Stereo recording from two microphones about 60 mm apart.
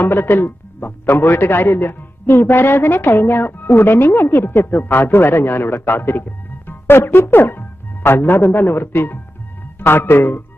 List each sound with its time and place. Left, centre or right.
0.0 s a man's voice: left